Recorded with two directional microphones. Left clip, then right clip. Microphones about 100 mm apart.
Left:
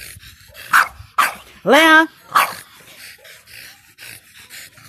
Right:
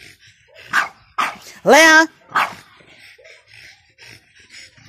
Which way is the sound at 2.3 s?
25° left (ahead or behind).